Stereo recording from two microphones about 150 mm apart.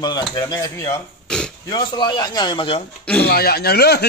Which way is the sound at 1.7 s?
30° left (ahead or behind).